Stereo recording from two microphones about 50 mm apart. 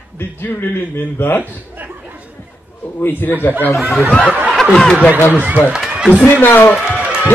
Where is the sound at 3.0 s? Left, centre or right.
Left.